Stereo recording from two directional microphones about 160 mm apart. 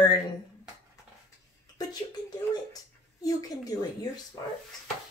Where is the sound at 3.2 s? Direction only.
25° left (ahead or behind).